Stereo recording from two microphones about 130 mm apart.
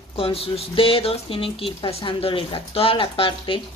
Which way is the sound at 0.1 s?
45° left (ahead or behind).